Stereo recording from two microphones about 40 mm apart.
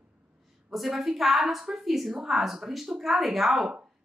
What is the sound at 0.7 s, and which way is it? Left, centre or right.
A woman's voice, centre.